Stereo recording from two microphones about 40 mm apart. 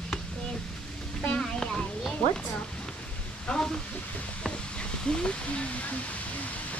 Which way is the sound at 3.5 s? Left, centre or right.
Left.